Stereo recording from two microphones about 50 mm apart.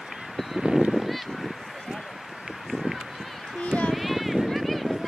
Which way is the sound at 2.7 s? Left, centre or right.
Centre.